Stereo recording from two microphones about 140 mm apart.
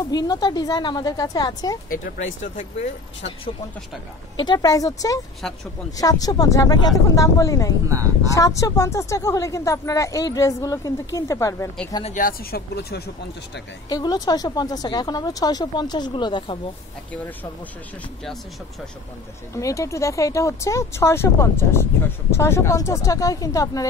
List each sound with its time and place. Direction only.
0.0 s speech: 25° left (ahead or behind)
1.9 s speech: 70° left (ahead or behind)
3.2 s speech: 45° left (ahead or behind)
4.4 s speech: 30° left (ahead or behind)
5.4 s speech: 5° left (ahead or behind)
5.9 s speech: 25° left (ahead or behind)
12.0 s speech: 65° left (ahead or behind); by 12.6 s 90° left
13.8 s speech: 25° left (ahead or behind)
17.1 s speech: 10° left (ahead or behind)
19.5 s speech: 20° left (ahead or behind)